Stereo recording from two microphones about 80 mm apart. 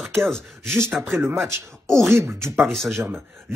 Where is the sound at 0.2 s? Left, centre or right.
Centre.